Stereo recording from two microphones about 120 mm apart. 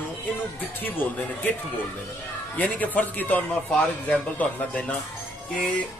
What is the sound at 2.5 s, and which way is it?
Speech, 10° left (ahead or behind).